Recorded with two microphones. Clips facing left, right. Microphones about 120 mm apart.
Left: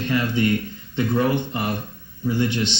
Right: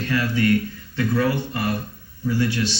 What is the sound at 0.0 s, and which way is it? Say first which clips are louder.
Speech: even; 20° left (ahead or behind).